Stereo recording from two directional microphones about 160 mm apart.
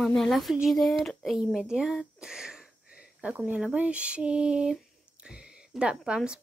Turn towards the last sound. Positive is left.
turn(degrees=-5)  # may be behind; listen again after turning